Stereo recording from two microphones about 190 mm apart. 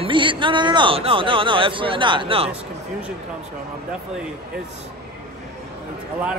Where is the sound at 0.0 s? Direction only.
25° right (ahead or behind).